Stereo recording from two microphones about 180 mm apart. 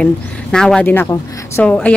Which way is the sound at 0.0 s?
5° left (ahead or behind).